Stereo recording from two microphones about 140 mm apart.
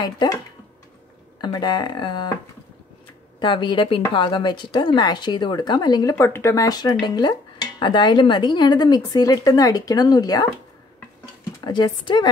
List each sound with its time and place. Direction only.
0.0 s speech: 30° left (ahead or behind)
1.4 s a woman's voice: 30° left (ahead or behind)
3.3 s a woman's voice: 35° left (ahead or behind)
11.6 s a woman's voice: 30° left (ahead or behind)